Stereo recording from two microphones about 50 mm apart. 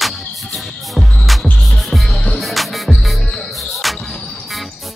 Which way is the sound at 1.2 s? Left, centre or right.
Centre.